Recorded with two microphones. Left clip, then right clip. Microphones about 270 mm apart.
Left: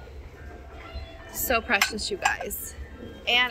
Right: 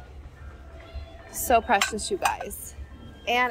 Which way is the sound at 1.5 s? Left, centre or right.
Centre.